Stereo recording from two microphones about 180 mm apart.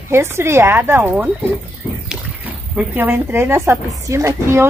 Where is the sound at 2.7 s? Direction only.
10° right (ahead or behind).